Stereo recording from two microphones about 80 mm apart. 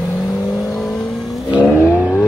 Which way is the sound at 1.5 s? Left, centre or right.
Centre.